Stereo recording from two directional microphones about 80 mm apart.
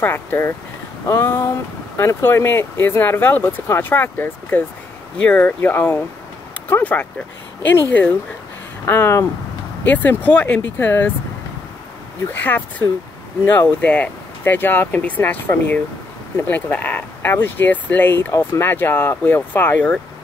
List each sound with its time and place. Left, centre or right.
0.0 s speech: left
8.8 s speech: left
9.8 s speech: centre
12.4 s a sound: left
13.5 s speech: centre